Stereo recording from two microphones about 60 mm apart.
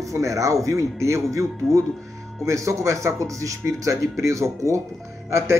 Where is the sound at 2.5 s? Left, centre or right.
Right.